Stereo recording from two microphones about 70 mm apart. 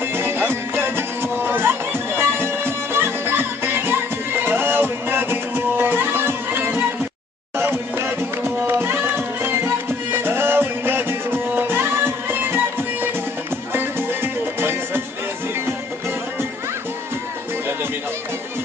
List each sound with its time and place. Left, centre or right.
0.1 s music: right